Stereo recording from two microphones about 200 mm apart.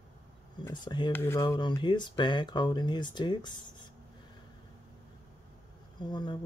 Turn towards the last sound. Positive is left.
turn(degrees=20)  # may be behind; listen again after turning